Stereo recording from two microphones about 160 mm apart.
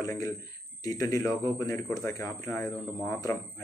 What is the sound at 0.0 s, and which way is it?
Speech, 20° left (ahead or behind).